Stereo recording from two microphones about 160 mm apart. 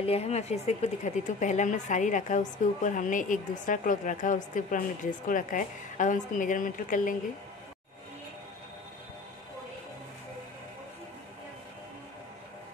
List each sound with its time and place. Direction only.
0.0 s speech: 40° left (ahead or behind); by 7.2 s 55° left (ahead or behind)